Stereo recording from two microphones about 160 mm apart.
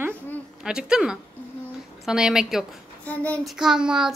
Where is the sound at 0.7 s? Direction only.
5° right (ahead or behind).